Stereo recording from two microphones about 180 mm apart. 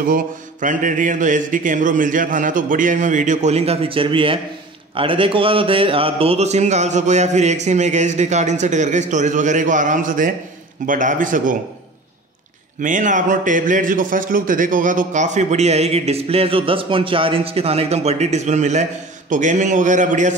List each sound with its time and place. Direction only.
0.0 s mantra: 50° right (ahead or behind); by 4.4 s 30° right (ahead or behind)
4.9 s a man's voice: 30° right (ahead or behind); by 10.3 s 50° right (ahead or behind)
10.9 s mantra: 45° right (ahead or behind)
12.8 s a man's voice: 45° right (ahead or behind)